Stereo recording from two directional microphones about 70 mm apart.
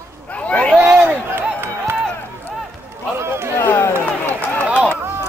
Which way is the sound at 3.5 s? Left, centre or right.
Left.